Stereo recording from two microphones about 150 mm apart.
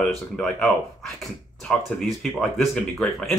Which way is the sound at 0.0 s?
5° left (ahead or behind).